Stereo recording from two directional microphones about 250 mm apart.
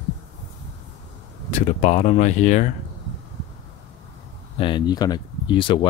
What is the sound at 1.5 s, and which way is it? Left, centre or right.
Speech, left.